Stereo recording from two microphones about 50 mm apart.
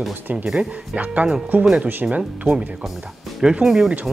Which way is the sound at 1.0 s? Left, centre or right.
Right.